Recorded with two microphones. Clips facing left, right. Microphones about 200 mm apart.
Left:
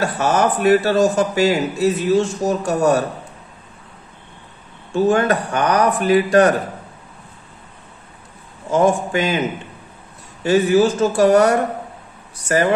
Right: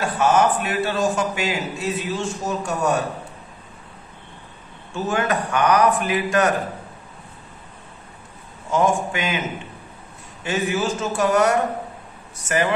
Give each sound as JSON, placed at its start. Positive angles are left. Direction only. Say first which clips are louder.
{"t": 0.0, "sound": "a man's voice", "louder": "left 1 dB", "side_deg": 40}
{"t": 4.9, "sound": "a man's voice", "louder": "left 7 dB", "side_deg": 35}
{"t": 8.7, "sound": "a man's voice", "louder": "left 4 dB", "side_deg": 35}
{"t": 10.4, "sound": "a man's voice", "louder": "left 9 dB", "side_deg": 35}